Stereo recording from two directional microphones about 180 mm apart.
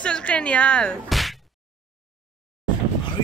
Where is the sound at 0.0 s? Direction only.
5° left (ahead or behind).